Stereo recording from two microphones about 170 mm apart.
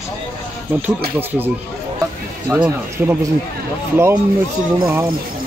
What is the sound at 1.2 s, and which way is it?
Speech, 10° right (ahead or behind).